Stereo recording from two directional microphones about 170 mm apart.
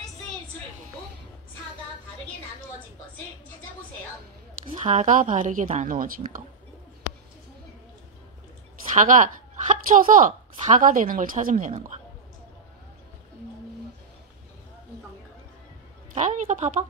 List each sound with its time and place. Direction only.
4.6 s a woman's voice: 40° right (ahead or behind)
8.9 s a woman's voice: 50° right (ahead or behind)
16.2 s a woman's voice: 45° right (ahead or behind)